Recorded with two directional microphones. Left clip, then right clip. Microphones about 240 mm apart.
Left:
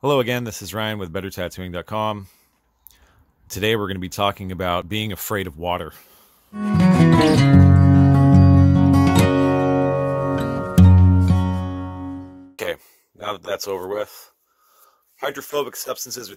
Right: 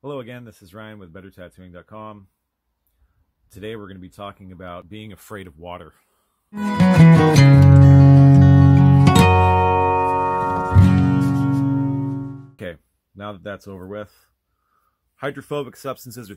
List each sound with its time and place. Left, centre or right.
0.0 s speech: left
3.4 s speech: left
6.5 s music: centre
13.3 s speech: left
15.1 s speech: centre